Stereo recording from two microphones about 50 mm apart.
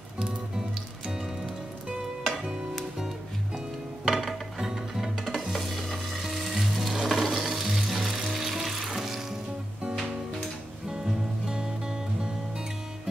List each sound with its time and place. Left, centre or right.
1.0 s music: centre
5.2 s frying: centre
10.9 s music: centre